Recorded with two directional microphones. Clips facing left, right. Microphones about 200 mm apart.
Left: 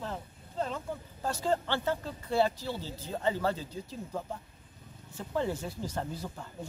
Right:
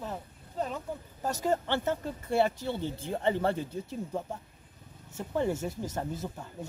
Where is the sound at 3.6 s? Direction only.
55° right (ahead or behind).